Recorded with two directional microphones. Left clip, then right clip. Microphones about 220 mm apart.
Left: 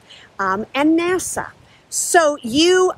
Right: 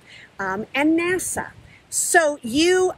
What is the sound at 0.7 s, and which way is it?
Speech, 15° left (ahead or behind).